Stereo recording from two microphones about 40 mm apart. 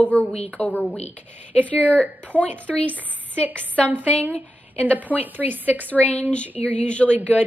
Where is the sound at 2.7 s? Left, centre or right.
Centre.